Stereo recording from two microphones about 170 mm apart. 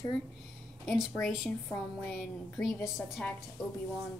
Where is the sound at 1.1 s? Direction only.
5° left (ahead or behind).